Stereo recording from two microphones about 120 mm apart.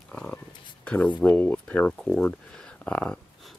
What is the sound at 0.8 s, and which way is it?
Speech, 10° left (ahead or behind).